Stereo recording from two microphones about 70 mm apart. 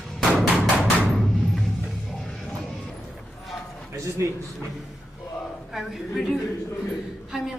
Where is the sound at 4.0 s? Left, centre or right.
Right.